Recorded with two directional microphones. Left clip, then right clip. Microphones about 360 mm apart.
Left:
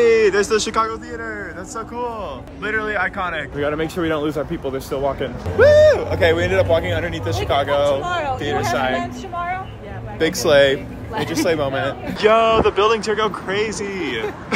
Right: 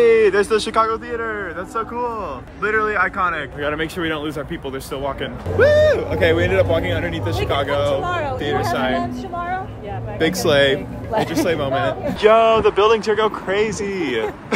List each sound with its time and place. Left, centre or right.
0.0 s speech: centre
8.0 s speech: centre
8.4 s speech: centre
10.1 s speech: centre